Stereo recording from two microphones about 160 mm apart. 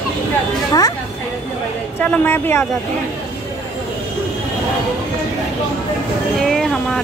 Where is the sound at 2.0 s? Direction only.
10° left (ahead or behind).